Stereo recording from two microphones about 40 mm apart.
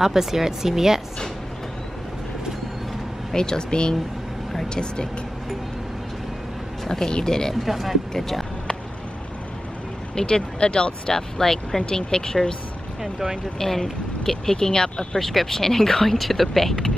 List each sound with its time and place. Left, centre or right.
0.0 s a woman's voice: centre
3.3 s speech: centre
6.9 s speech: centre
7.6 s speech: centre
10.1 s speech: left
13.0 s a woman's voice: centre
13.6 s speech: centre
15.1 s speech: centre